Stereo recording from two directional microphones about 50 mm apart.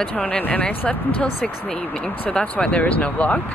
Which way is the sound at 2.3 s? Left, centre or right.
Left.